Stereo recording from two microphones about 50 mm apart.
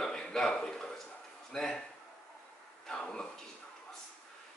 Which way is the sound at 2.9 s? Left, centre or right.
Centre.